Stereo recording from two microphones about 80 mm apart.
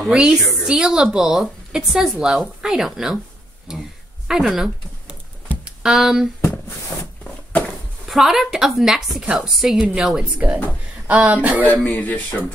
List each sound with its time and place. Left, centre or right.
0.0 s a woman's voice: centre
5.8 s speech: centre
8.1 s a woman's voice: centre
11.6 s speech: left